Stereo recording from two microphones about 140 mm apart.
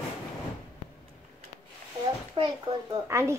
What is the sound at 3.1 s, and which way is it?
Speech, 20° right (ahead or behind).